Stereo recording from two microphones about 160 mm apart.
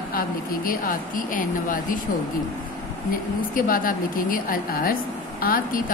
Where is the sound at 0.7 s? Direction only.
60° left (ahead or behind).